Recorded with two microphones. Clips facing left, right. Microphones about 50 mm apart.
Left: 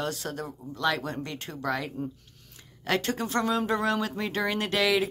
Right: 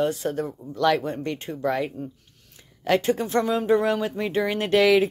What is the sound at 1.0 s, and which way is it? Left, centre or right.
Speech, right.